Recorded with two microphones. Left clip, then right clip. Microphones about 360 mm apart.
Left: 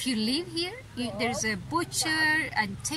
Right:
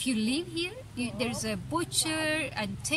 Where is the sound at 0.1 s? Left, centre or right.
Right.